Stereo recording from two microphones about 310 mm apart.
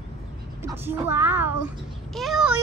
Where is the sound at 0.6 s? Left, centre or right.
Centre.